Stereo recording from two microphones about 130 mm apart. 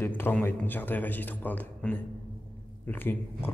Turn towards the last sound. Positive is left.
turn(degrees=15)  # may be behind; listen again after turning